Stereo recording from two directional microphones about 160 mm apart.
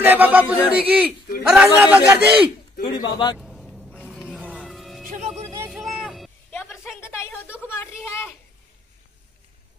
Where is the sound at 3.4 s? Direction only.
Centre (ahead or behind).